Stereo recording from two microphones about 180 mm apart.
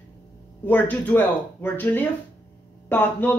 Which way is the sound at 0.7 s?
10° left (ahead or behind).